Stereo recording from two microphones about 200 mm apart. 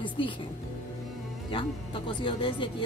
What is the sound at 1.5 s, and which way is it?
Speech, 25° left (ahead or behind).